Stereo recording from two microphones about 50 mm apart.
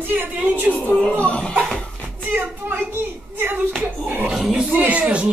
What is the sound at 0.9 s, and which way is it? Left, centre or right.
Speech, left.